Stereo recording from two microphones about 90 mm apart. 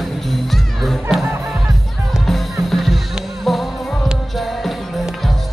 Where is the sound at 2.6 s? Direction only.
Centre (ahead or behind).